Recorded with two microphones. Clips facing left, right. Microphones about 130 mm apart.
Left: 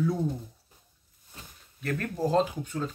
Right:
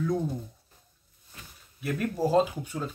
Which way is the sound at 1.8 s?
10° right (ahead or behind).